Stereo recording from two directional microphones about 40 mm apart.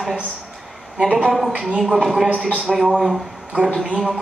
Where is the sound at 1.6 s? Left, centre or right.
Right.